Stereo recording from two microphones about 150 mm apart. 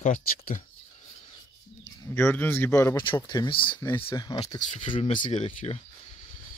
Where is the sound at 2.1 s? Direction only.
15° left (ahead or behind); by 3.8 s 35° left (ahead or behind).